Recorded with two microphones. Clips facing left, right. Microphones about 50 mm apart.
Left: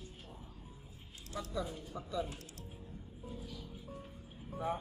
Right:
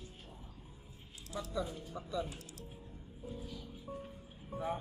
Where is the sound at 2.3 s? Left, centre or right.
Left.